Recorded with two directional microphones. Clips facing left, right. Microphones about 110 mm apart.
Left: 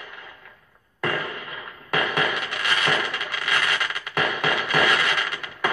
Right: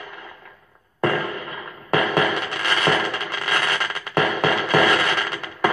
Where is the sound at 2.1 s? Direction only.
40° right (ahead or behind).